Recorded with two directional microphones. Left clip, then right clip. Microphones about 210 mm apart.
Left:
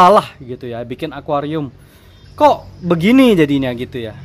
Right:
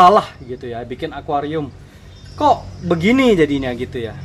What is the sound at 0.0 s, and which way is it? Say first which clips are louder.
Speech: left 1 dB; 50° left (ahead or behind).